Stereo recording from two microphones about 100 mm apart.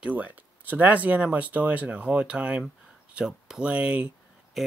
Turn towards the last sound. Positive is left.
turn(degrees=-10)  # may be behind; listen again after turning